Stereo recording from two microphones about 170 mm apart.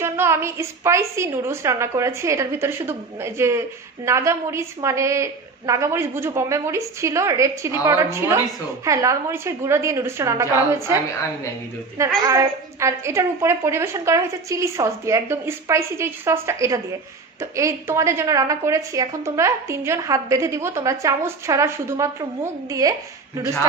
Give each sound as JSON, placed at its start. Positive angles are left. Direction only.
{"t": 0.0, "sound": "a woman's voice", "side_deg": -15}
{"t": 12.0, "sound": "a woman's voice", "side_deg": -20}